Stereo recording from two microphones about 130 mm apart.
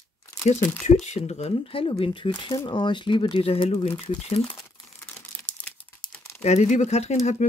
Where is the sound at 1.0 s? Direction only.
60° left (ahead or behind).